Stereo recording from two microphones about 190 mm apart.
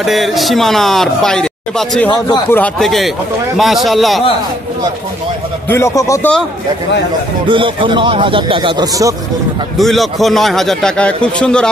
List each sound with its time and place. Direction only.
0.0 s a man's voice: centre (ahead or behind)
5.7 s a man's voice: 15° left (ahead or behind)
7.4 s speech: 25° right (ahead or behind)
9.8 s a man's voice: centre (ahead or behind)